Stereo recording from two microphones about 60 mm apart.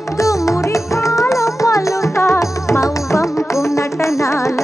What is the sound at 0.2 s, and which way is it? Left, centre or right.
Music, left.